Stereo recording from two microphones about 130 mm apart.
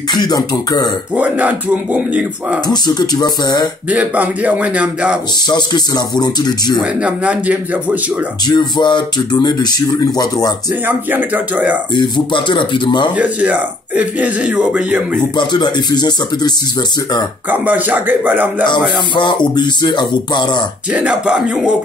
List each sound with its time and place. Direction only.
0.1 s speech: 30° left (ahead or behind)
1.1 s speech: 10° right (ahead or behind)
2.7 s speech: 30° left (ahead or behind)
3.9 s speech: 10° right (ahead or behind)
5.5 s speech: 35° left (ahead or behind)
7.0 s speech: 10° right (ahead or behind)
8.5 s speech: 35° left (ahead or behind)
10.9 s speech: 15° right (ahead or behind)
11.9 s speech: 35° left (ahead or behind)
13.1 s speech: 10° right (ahead or behind)
15.3 s speech: 35° left (ahead or behind)
17.5 s speech: 10° right (ahead or behind)
18.7 s speech: 35° left (ahead or behind)
20.9 s speech: 5° right (ahead or behind)